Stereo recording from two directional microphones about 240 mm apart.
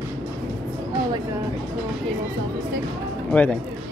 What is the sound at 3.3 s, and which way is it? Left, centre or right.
Speech, centre.